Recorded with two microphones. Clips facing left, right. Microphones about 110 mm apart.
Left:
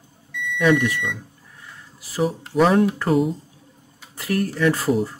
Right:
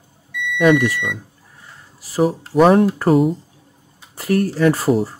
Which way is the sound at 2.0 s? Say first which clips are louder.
Right 5 dB; 40° right (ahead or behind).